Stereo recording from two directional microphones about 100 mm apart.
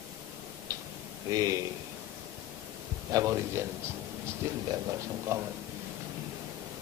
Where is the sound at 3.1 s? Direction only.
30° right (ahead or behind).